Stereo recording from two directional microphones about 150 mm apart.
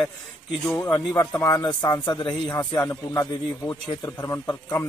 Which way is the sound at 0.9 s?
25° left (ahead or behind).